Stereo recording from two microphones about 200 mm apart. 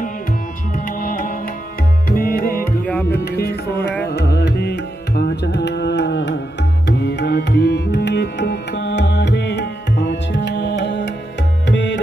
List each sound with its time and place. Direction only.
0.7 s music: 45° left (ahead or behind)
2.0 s tabla: 45° left (ahead or behind)
2.8 s tabla: 5° left (ahead or behind)
3.1 s tabla: 55° left (ahead or behind)
4.0 s music: 55° left (ahead or behind)
11.6 s tabla: 60° left (ahead or behind)